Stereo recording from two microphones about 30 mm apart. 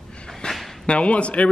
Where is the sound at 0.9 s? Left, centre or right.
Left.